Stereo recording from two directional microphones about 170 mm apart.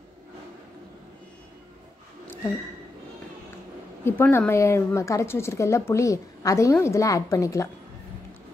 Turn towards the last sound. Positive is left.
turn(degrees=20)  # may be behind; listen again after turning